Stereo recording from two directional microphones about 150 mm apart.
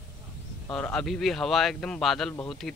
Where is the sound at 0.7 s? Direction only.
5° left (ahead or behind).